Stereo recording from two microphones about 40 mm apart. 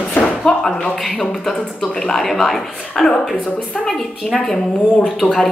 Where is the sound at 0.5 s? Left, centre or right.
Centre.